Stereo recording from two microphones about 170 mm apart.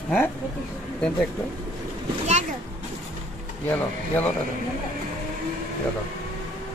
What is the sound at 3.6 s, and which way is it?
Speech, 10° left (ahead or behind).